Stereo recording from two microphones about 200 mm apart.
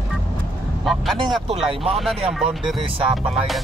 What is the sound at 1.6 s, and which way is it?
Speech, 30° right (ahead or behind).